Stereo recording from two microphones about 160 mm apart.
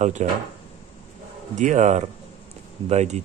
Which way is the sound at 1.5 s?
50° right (ahead or behind).